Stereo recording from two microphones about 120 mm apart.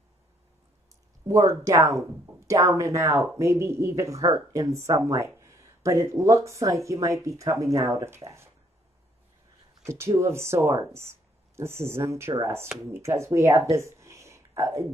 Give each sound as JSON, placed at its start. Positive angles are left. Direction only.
{"t": 1.2, "sound": "speech", "side_deg": -30}
{"t": 9.8, "sound": "speech", "side_deg": -20}